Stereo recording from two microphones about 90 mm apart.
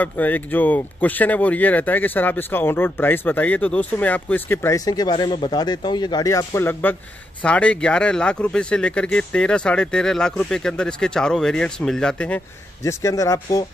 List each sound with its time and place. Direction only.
0.0 s speech: 20° left (ahead or behind)
4.7 s speech: 45° left (ahead or behind)
6.2 s speech: 30° left (ahead or behind); by 12.4 s 10° left (ahead or behind)
12.8 s speech: 35° left (ahead or behind)